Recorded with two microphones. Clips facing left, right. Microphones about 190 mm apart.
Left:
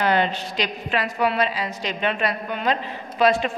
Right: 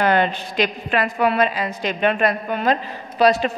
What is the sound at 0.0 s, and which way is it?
A woman's voice, 50° right (ahead or behind).